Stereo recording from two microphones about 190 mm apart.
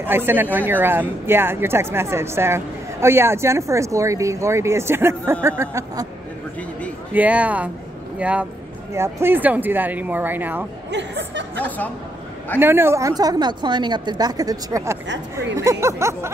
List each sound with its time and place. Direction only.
0.0 s speech: 10° right (ahead or behind)
7.2 s speech: 5° right (ahead or behind)
10.9 s a woman's voice: 65° right (ahead or behind)
11.5 s a woman's voice: 10° left (ahead or behind)
12.5 s a woman's voice: 10° right (ahead or behind)